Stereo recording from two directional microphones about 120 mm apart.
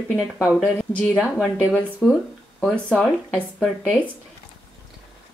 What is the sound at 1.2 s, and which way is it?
Speech, 10° right (ahead or behind).